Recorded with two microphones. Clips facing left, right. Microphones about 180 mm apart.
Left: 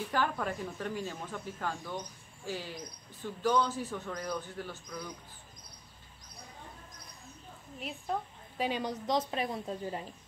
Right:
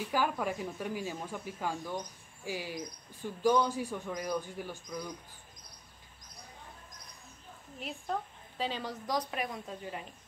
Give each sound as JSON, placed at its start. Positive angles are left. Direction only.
{"t": 0.1, "sound": "speech", "side_deg": -10}
{"t": 8.5, "sound": "a woman's voice", "side_deg": 15}